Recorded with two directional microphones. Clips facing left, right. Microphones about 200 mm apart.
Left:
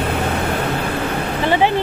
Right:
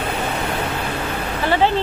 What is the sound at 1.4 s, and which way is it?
Speech, 15° left (ahead or behind).